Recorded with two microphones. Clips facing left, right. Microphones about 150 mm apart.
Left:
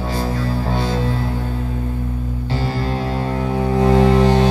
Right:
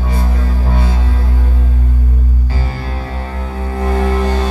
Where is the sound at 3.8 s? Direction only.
25° left (ahead or behind).